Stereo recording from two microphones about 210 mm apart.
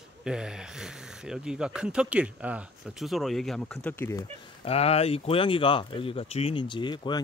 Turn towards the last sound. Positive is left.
turn(degrees=20)  # may be behind; listen again after turning